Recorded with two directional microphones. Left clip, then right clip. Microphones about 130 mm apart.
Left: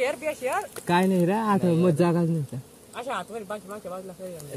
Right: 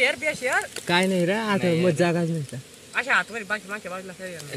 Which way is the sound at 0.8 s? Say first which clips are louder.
Left 1 dB; 90° left.